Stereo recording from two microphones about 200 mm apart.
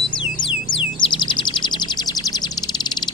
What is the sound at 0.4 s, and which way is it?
Music, 25° left (ahead or behind).